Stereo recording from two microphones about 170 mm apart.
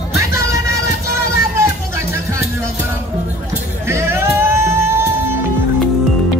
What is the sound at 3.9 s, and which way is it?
Music, 15° right (ahead or behind).